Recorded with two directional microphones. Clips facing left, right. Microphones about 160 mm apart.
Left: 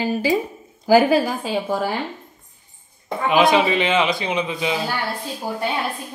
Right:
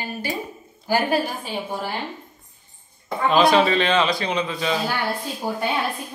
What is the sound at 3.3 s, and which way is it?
A man's voice, 15° left (ahead or behind).